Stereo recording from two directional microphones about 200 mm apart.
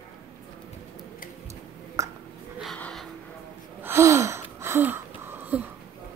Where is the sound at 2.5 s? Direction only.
5° left (ahead or behind).